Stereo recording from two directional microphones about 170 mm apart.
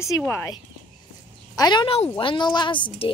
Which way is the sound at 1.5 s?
25° left (ahead or behind).